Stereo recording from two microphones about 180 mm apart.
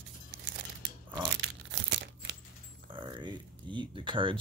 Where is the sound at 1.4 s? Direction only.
80° right.